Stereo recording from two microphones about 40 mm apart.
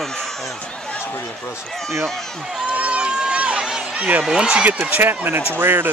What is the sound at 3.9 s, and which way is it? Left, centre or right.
Speech, right.